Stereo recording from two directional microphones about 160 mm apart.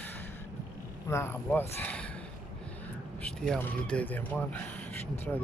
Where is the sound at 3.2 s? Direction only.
5° left (ahead or behind).